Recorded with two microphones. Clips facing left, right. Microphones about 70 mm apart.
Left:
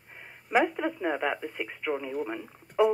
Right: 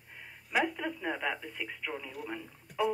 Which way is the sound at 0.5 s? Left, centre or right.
Left.